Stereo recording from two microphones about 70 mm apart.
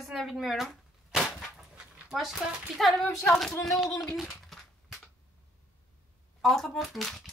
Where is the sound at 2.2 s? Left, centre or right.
Centre.